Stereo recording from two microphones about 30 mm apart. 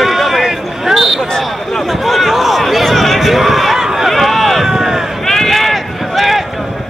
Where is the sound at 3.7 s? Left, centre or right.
Centre.